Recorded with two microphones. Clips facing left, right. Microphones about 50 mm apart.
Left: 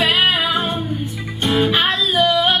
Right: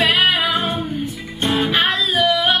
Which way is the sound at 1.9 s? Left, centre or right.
Right.